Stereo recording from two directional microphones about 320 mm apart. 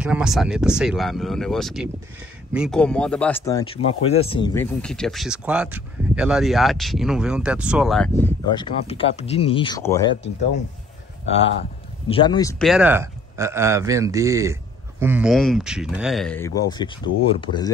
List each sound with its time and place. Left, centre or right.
0.0 s speech: centre
8.8 s speech: centre
12.1 s speech: centre